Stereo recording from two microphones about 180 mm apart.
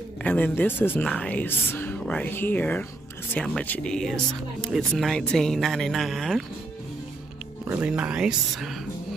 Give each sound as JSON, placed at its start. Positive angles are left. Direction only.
{"t": 0.2, "sound": "speech", "side_deg": 10}
{"t": 7.6, "sound": "speech", "side_deg": -10}